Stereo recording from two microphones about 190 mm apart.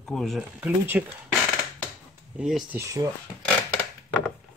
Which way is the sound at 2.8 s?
15° right (ahead or behind).